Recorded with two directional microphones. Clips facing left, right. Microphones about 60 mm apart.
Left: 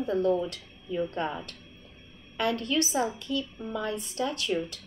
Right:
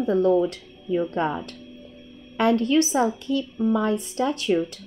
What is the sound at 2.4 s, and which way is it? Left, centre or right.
Speech, right.